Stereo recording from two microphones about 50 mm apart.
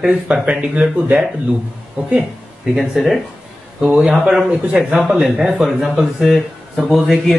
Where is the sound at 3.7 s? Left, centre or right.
Centre.